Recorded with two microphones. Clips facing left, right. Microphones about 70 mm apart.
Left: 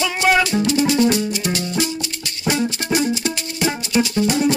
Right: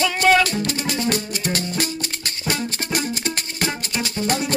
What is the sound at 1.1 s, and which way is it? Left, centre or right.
Music, right.